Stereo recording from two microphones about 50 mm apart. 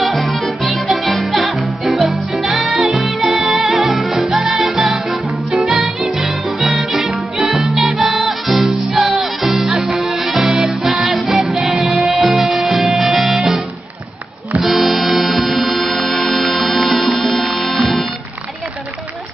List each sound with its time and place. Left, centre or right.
0.0 s music: centre
14.6 s music: centre